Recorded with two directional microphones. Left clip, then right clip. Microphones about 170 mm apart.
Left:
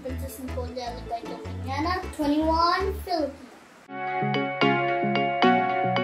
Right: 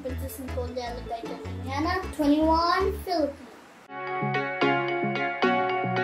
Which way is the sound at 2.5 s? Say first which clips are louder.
Left 1 dB; 15° right (ahead or behind).